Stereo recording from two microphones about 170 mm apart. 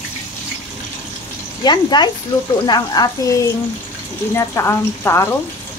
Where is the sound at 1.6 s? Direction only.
25° left (ahead or behind).